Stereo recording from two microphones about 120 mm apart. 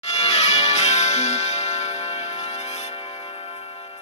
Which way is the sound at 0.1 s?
65° left (ahead or behind).